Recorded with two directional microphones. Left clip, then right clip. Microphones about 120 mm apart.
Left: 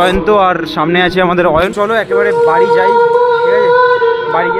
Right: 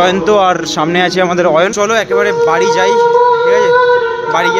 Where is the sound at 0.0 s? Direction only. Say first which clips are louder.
Even; centre (ahead or behind).